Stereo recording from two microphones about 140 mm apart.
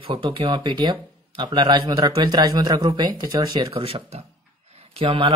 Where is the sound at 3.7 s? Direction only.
40° right (ahead or behind).